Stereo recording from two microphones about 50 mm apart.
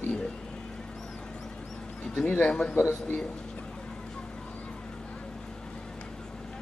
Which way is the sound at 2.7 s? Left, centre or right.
Left.